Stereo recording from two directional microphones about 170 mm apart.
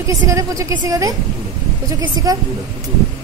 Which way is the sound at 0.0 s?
20° right (ahead or behind).